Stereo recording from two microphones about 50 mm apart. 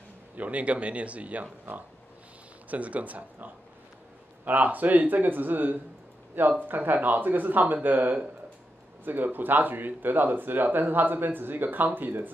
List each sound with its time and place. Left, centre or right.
0.4 s speech: right